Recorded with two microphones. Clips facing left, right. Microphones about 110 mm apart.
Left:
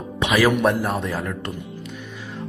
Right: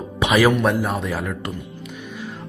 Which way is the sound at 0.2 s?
15° right (ahead or behind).